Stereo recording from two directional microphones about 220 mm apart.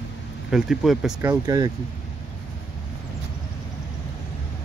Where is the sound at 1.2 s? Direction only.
15° right (ahead or behind).